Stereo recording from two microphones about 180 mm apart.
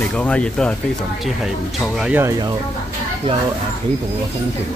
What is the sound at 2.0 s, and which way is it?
Speech, 10° right (ahead or behind).